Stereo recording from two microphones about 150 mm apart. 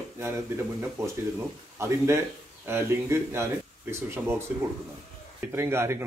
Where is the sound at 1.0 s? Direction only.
20° right (ahead or behind).